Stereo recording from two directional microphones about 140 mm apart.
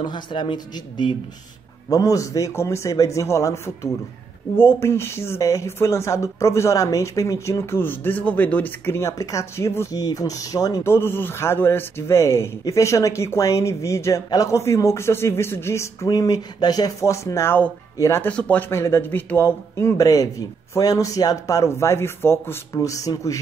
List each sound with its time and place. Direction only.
0.0 s speech: 35° left (ahead or behind)